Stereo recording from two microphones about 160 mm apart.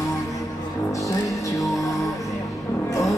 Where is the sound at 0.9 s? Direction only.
20° left (ahead or behind).